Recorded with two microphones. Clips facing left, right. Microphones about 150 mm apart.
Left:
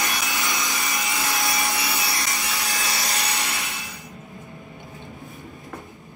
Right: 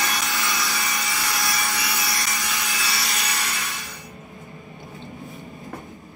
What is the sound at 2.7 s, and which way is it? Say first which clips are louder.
Wood: left 1 dB; 40° left (ahead or behind).